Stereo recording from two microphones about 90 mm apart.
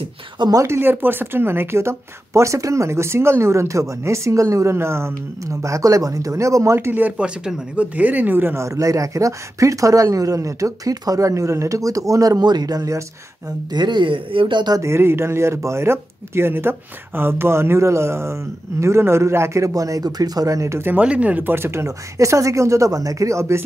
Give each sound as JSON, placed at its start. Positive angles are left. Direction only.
{"t": 0.6, "sound": "a woman's voice", "side_deg": -25}
{"t": 13.7, "sound": "speech", "side_deg": -55}
{"t": 14.8, "sound": "a woman's voice", "side_deg": -30}
{"t": 20.9, "sound": "a woman's voice", "side_deg": -15}